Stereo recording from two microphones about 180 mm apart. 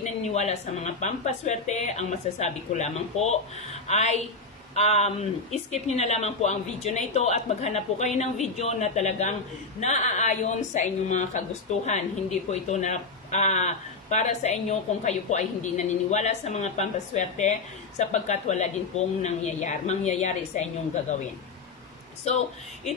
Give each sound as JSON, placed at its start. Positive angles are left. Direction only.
{"t": 0.0, "sound": "a woman's voice", "side_deg": 40}
{"t": 22.3, "sound": "a woman's voice", "side_deg": 35}